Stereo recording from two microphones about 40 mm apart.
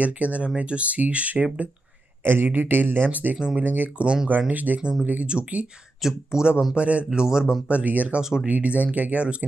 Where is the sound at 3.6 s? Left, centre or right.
Right.